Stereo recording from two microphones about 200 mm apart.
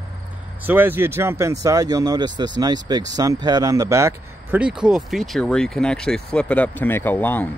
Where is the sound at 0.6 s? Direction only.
10° right (ahead or behind).